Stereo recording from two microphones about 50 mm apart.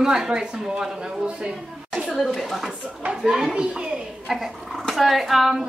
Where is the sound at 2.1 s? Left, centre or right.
Centre.